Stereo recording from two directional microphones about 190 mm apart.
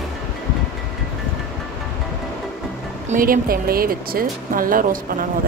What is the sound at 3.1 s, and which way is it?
Speech, 50° right (ahead or behind).